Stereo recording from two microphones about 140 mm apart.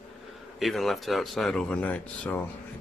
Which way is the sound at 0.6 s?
Centre (ahead or behind).